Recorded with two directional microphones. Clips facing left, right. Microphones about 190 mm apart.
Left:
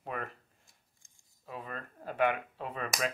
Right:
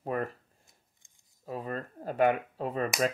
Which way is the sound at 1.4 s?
40° right (ahead or behind).